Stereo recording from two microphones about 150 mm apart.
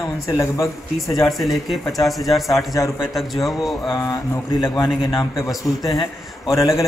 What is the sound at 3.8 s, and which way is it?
A man's voice, 20° left (ahead or behind).